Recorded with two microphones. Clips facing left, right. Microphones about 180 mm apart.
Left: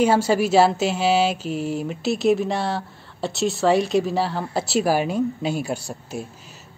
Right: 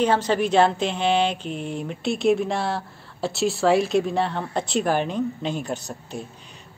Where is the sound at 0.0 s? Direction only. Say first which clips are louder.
Left 2 dB; 10° left (ahead or behind).